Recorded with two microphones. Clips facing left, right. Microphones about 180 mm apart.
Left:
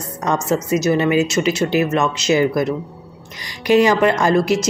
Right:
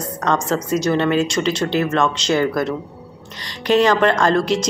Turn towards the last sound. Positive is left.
turn(degrees=10)  # may be behind; listen again after turning